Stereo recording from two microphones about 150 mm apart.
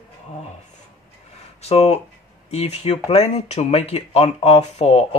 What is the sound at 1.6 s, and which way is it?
Speech, 45° left (ahead or behind).